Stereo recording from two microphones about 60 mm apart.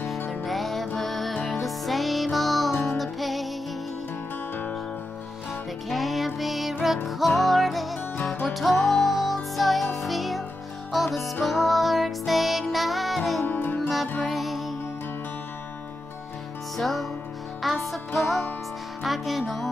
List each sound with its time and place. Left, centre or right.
0.3 s music: centre
5.9 s music: centre
13.5 s music: left
14.2 s music: centre
16.7 s music: centre